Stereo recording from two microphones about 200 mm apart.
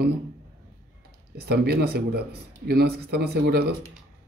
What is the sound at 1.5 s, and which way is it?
Speech, 55° right (ahead or behind).